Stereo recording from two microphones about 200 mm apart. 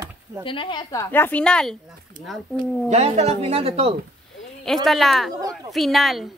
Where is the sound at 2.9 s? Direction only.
35° right (ahead or behind).